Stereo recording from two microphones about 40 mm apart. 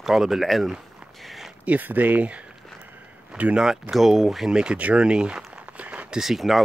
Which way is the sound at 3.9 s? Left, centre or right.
Centre.